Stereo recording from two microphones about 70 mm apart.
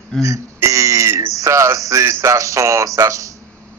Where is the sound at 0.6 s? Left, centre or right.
Right.